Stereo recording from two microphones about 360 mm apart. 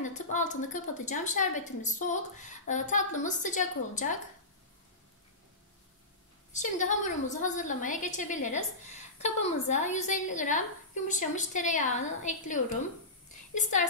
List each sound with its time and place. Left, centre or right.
0.0 s a woman's voice: left
6.5 s a woman's voice: centre